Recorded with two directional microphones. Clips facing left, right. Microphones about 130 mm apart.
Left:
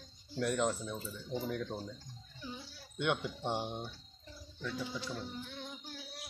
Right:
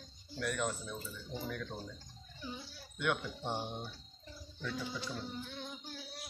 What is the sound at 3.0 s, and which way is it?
Speech, 20° left (ahead or behind).